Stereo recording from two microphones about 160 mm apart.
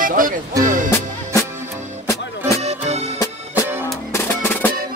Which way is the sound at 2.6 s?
45° right (ahead or behind).